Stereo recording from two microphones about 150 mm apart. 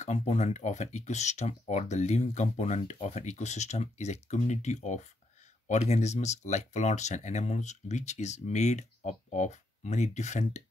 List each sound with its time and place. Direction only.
0.0 s speech: 50° left (ahead or behind)